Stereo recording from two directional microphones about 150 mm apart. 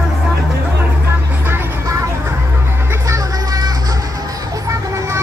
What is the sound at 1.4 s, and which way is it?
Music, 15° right (ahead or behind).